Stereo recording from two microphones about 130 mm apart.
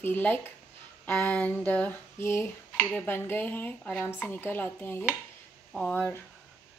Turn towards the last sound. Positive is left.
turn(degrees=10)  # may be behind; listen again after turning